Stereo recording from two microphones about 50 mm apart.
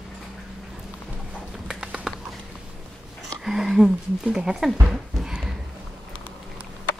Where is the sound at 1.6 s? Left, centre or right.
Centre.